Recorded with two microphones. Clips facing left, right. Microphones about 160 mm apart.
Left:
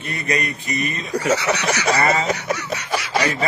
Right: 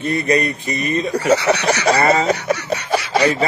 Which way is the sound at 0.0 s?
30° right (ahead or behind).